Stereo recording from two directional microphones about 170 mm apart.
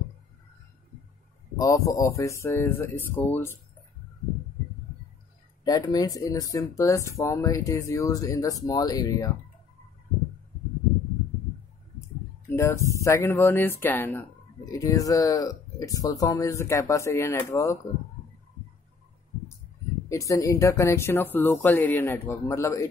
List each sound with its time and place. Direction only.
1.6 s speech: 20° left (ahead or behind)
5.6 s speech: 25° left (ahead or behind)
12.4 s speech: 15° left (ahead or behind)
20.1 s speech: 20° left (ahead or behind)